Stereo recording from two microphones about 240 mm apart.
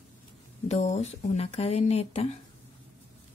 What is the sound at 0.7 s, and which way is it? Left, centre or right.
Speech, left.